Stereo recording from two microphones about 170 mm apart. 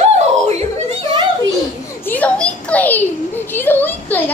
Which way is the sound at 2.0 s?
10° left (ahead or behind).